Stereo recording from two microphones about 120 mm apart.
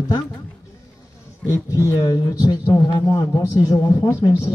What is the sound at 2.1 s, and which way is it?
Speech, 35° left (ahead or behind).